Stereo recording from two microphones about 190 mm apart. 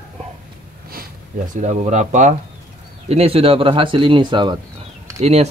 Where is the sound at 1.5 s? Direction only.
40° right (ahead or behind).